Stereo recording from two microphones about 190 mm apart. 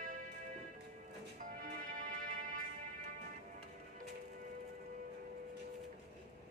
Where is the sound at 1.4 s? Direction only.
45° right (ahead or behind).